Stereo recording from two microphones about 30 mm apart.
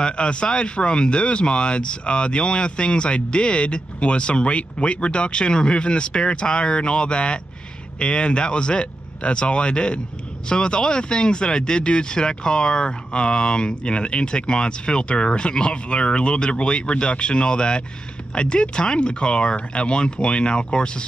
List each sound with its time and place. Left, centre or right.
0.0 s speech: left